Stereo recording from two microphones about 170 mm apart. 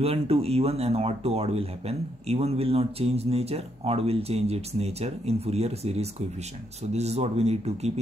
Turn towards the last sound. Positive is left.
turn(degrees=-40)  # may be behind; listen again after turning